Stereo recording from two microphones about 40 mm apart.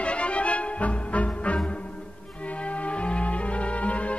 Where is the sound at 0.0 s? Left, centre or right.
Left.